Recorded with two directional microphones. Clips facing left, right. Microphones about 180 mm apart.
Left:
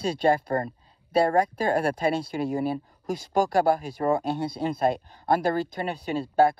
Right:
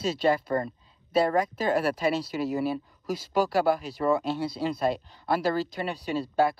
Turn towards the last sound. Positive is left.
turn(degrees=50)  # may be behind; listen again after turning